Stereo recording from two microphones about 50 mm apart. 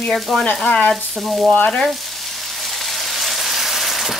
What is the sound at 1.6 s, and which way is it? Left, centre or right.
Frying, centre.